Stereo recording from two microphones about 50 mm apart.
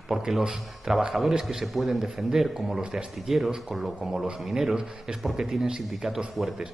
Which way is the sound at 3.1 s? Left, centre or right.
Centre.